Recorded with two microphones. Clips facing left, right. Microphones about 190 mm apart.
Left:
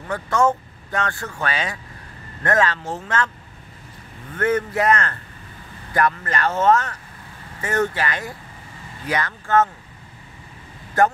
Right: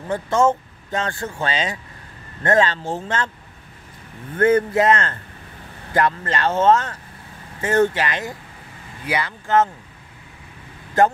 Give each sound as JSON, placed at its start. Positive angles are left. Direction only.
{"t": 0.1, "sound": "speech", "side_deg": -25}
{"t": 4.4, "sound": "speech", "side_deg": -30}